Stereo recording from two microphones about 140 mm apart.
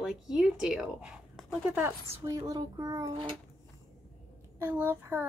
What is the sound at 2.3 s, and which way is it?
Speech, 25° right (ahead or behind).